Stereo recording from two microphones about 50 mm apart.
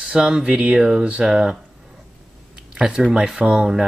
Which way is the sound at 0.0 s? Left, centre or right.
Centre.